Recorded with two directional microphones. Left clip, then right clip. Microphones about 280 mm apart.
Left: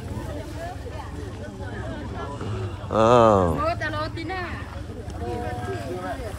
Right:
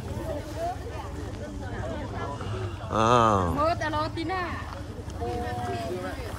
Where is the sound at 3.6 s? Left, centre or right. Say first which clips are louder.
Even; right.